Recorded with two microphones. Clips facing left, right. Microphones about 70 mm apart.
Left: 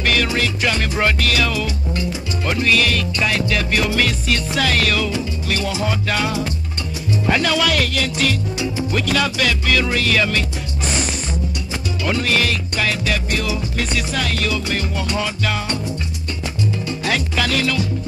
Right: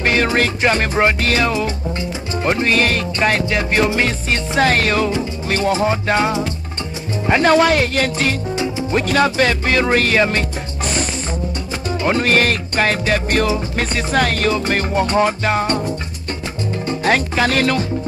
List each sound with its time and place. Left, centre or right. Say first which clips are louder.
0.0 s music: right 3 dB; right
12.0 s music: right 4 dB; right
16.8 s speech: right 10 dB; right